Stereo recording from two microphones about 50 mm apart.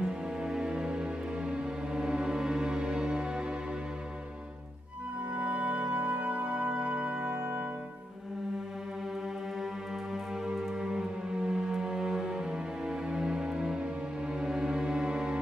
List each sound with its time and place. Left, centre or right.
0.0 s music: centre
5.3 s music: right
10.1 s music: centre